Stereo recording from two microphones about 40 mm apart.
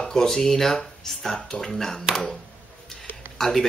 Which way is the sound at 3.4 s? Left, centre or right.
Centre.